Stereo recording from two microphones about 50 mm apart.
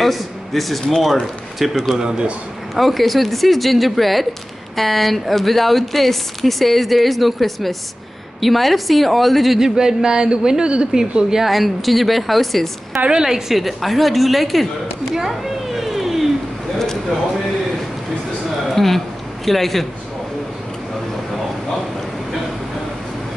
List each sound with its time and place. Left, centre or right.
0.0 s speech: centre
2.0 s speech: centre
2.7 s speech: centre
9.6 s speech: centre
13.1 s speech: centre
15.1 s a sound: centre
16.7 s a sound: centre
18.8 s speech: centre